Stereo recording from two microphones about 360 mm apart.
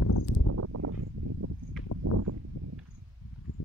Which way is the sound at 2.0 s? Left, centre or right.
Right.